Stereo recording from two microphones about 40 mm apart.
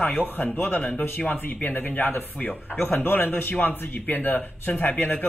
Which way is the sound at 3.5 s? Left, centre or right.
Left.